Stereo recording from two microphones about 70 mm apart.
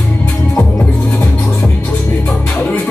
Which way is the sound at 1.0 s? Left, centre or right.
Left.